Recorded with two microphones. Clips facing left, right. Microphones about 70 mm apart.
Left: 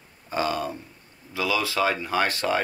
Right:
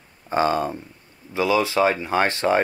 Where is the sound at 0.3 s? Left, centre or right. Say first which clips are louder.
Right 6 dB; right.